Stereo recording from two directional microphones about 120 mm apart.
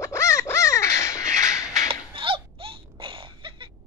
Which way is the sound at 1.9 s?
45° right (ahead or behind).